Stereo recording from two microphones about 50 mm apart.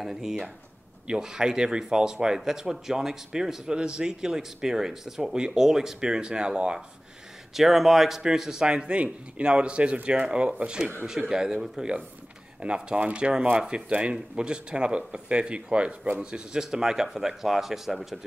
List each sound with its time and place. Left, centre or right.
0.0 s speech: centre
7.5 s speech: centre
12.6 s speech: right